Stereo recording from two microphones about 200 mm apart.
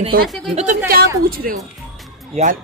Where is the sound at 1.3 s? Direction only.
45° right (ahead or behind).